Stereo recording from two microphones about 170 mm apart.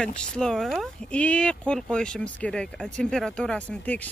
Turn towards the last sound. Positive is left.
turn(degrees=10)  # may be behind; listen again after turning